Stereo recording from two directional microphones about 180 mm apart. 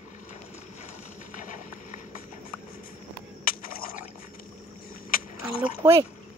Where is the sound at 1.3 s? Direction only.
45° left (ahead or behind).